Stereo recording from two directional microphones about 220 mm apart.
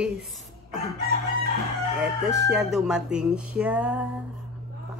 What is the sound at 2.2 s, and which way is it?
Speech, centre (ahead or behind).